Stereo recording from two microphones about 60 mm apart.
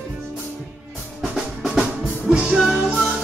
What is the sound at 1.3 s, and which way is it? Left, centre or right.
Drum, centre.